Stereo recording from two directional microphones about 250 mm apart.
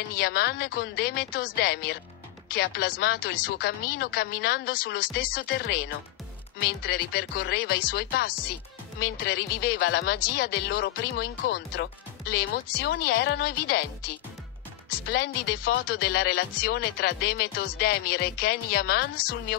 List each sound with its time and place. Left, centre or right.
0.2 s speech: left
6.8 s speech: left
14.9 s speech: left